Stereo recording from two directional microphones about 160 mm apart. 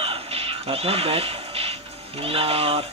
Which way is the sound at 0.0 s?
40° right (ahead or behind).